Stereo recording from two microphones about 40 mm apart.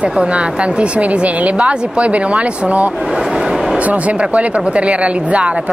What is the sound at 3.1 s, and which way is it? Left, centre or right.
Vehicle, centre.